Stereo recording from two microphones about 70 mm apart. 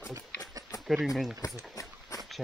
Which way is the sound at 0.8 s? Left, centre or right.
Centre.